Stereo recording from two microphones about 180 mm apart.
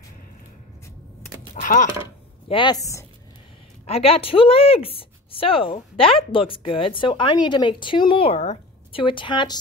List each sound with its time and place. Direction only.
1.5 s typing: 50° left (ahead or behind)
2.4 s a woman's voice: 25° left (ahead or behind)
3.8 s speech: 35° left (ahead or behind)
9.0 s a woman's voice: 25° left (ahead or behind)